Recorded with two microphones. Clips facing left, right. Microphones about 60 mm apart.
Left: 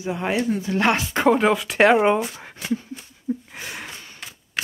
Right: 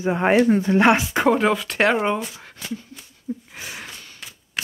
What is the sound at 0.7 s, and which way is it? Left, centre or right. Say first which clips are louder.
Speech: right 2 dB; centre.